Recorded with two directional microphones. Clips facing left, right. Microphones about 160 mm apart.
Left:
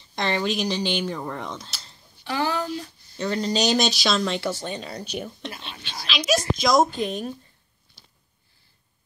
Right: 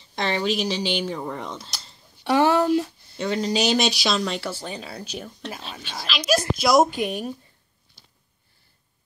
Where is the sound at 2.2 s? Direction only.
65° right (ahead or behind).